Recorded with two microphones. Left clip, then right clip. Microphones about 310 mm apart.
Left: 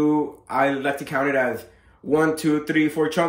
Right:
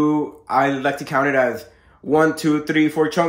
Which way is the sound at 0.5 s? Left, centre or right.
Centre.